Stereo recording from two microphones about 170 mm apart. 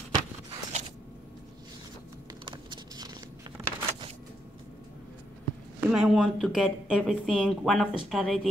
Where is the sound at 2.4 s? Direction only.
25° right (ahead or behind).